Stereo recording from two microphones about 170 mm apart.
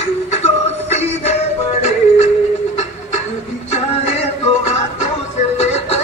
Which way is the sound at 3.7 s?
40° left (ahead or behind).